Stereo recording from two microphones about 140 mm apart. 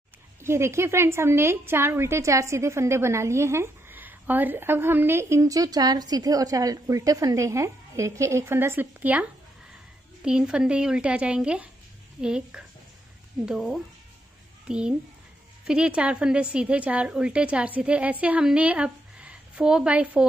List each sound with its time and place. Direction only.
0.4 s a woman's voice: 20° right (ahead or behind)